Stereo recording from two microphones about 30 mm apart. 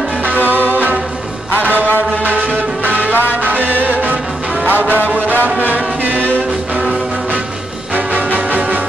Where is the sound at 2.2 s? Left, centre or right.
Right.